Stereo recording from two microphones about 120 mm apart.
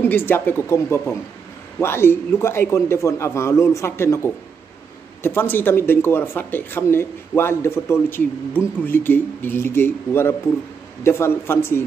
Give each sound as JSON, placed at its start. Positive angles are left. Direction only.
{"t": 0.0, "sound": "a man's voice", "side_deg": 15}